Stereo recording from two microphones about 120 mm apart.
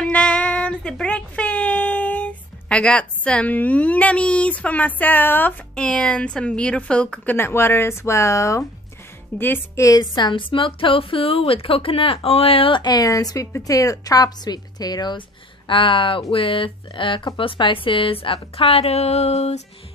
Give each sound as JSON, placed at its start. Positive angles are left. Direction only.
{"t": 0.0, "sound": "speech", "side_deg": 10}
{"t": 7.3, "sound": "a woman's voice", "side_deg": 20}